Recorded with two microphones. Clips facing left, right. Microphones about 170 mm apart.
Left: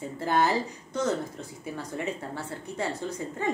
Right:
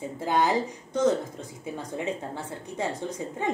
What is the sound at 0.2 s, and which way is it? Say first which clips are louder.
Speech: right 1 dB; 15° right (ahead or behind).